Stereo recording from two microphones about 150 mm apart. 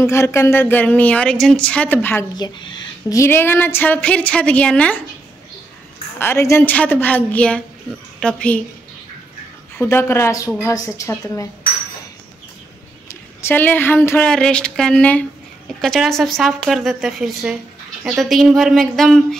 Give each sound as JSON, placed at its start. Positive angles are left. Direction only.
{"t": 0.0, "sound": "speech", "side_deg": 15}
{"t": 2.3, "sound": "speech", "side_deg": 30}
{"t": 3.2, "sound": "speech", "side_deg": 15}
{"t": 6.1, "sound": "speech", "side_deg": 15}
{"t": 9.8, "sound": "a woman's voice", "side_deg": 15}
{"t": 13.1, "sound": "speech", "side_deg": 15}